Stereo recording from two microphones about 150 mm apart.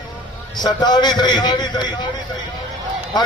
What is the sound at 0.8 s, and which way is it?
A man's voice, 30° left (ahead or behind).